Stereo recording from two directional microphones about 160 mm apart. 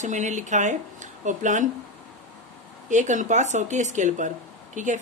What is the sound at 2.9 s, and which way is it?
A woman's voice, 50° right (ahead or behind).